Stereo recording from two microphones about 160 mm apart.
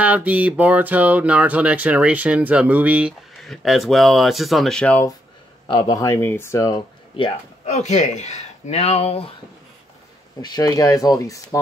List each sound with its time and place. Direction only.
0.0 s speech: 10° right (ahead or behind); by 5.0 s 5° left (ahead or behind)
5.7 s speech: 30° left (ahead or behind)
7.6 s speech: 45° left (ahead or behind)
10.4 s speech: 25° left (ahead or behind)